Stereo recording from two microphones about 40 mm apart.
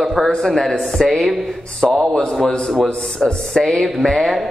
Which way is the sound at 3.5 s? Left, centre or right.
Centre.